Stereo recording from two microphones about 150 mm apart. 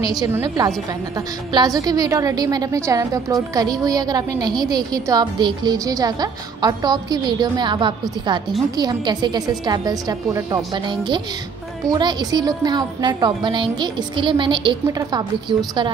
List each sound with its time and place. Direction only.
0.2 s a woman's voice: 25° right (ahead or behind)